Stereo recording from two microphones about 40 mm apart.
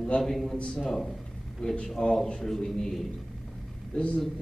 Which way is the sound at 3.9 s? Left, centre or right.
Left.